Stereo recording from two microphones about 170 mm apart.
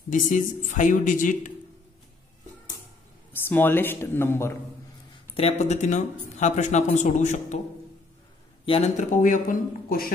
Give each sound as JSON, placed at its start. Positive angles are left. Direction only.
{"t": 0.1, "sound": "speech", "side_deg": 50}
{"t": 3.4, "sound": "speech", "side_deg": 10}
{"t": 5.1, "sound": "speech", "side_deg": 35}
{"t": 8.6, "sound": "speech", "side_deg": 35}